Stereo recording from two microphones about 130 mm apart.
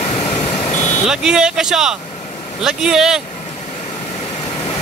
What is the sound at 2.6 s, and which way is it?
Speech, 5° right (ahead or behind).